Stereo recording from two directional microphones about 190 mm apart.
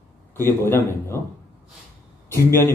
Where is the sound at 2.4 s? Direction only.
15° left (ahead or behind).